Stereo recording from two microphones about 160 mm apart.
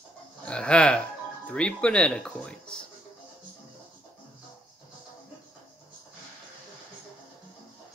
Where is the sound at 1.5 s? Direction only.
5° left (ahead or behind).